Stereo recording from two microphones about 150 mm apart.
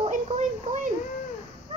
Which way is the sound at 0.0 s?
55° right (ahead or behind).